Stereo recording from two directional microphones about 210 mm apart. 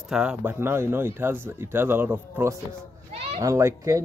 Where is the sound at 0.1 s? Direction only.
5° right (ahead or behind).